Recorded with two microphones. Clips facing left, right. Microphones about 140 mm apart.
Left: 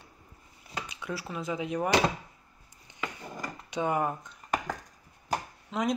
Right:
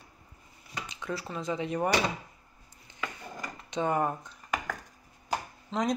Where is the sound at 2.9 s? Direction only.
15° left (ahead or behind).